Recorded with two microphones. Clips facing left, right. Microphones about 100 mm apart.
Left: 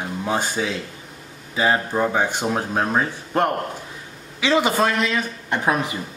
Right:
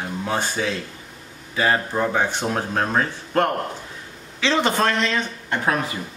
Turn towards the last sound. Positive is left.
turn(degrees=15)  # may be behind; listen again after turning